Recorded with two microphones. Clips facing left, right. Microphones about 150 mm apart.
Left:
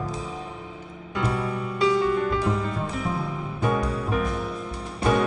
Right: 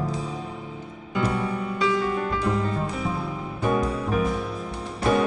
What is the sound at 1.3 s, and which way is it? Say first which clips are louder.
Music: left 1 dB; centre (ahead or behind).